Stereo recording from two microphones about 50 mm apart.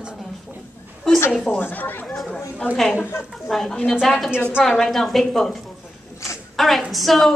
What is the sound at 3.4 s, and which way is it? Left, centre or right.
A woman's voice, centre.